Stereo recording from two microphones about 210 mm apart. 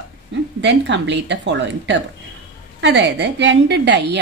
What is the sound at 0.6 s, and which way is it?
A woman's voice, 60° right (ahead or behind).